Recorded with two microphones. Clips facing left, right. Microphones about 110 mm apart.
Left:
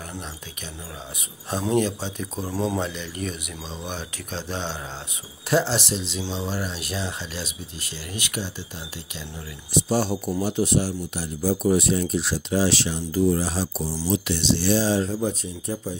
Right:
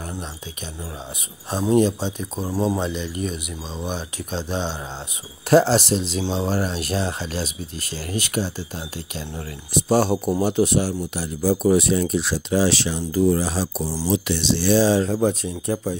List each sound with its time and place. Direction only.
1.5 s speech: 15° right (ahead or behind)
5.5 s speech: 45° right (ahead or behind)
9.8 s speech: 55° right (ahead or behind); by 16.0 s 75° right (ahead or behind)